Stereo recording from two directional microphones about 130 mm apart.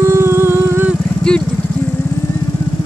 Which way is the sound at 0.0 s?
20° right (ahead or behind).